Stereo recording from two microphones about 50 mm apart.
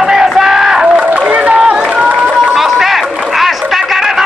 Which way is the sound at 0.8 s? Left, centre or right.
Centre.